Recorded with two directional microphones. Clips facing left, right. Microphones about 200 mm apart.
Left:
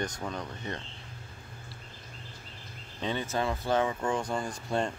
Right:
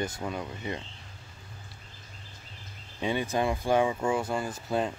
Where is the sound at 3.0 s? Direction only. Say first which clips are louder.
Right 3 dB; 10° right (ahead or behind).